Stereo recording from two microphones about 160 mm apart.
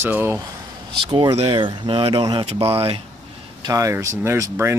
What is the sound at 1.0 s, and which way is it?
Speech, 30° right (ahead or behind).